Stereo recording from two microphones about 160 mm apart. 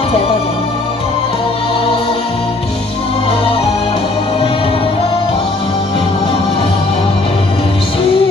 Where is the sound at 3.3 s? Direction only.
35° left (ahead or behind).